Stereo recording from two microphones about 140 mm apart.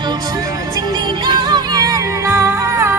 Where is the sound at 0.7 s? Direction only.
30° right (ahead or behind).